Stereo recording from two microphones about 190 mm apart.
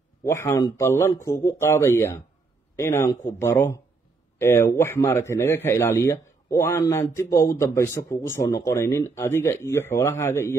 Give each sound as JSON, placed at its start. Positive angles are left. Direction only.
{"t": 0.2, "sound": "a man's voice", "side_deg": 15}